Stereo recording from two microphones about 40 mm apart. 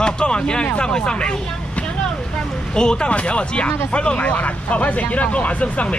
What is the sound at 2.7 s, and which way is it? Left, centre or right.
Speech, left.